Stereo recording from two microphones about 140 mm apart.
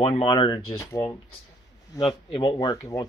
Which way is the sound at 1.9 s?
35° left (ahead or behind).